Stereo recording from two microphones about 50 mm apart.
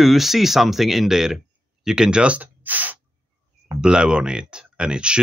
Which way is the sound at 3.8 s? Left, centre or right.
Centre.